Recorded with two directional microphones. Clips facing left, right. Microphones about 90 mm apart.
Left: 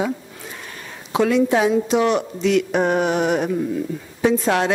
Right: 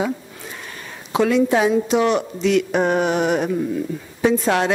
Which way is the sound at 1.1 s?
10° left (ahead or behind).